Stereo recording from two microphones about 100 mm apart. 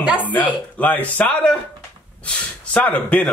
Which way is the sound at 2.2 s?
15° left (ahead or behind).